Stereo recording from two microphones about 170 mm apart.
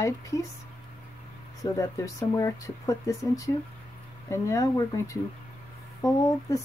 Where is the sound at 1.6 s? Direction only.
20° left (ahead or behind).